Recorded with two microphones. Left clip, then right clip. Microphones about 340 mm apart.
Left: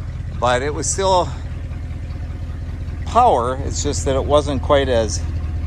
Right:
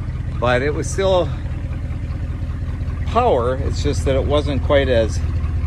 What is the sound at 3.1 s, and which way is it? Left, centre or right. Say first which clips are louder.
Speech: left 2 dB; centre.